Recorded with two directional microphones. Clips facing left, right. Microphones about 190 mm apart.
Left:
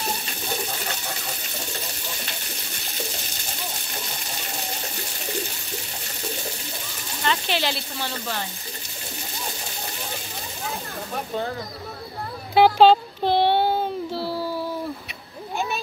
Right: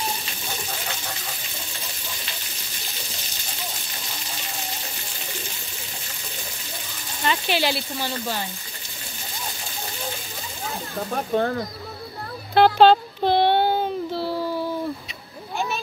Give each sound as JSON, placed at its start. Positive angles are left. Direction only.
{"t": 7.2, "sound": "speech", "side_deg": -5}
{"t": 11.3, "sound": "speech", "side_deg": -55}
{"t": 12.5, "sound": "child singing", "side_deg": 5}